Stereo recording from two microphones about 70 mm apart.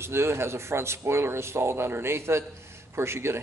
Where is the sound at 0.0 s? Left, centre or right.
Right.